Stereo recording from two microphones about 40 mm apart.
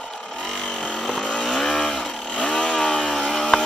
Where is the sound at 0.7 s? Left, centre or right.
Left.